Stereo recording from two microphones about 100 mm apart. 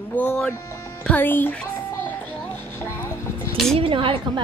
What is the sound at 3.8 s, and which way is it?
Speech, 65° right (ahead or behind).